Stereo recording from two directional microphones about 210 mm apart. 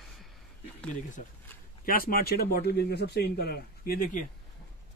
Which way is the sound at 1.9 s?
45° left (ahead or behind).